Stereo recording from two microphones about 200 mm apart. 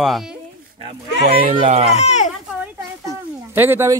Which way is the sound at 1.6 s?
30° right (ahead or behind).